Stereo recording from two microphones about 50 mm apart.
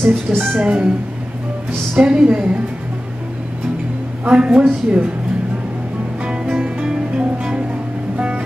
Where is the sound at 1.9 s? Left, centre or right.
Centre.